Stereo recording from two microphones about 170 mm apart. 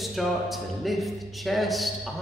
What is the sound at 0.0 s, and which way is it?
A man's voice, centre (ahead or behind).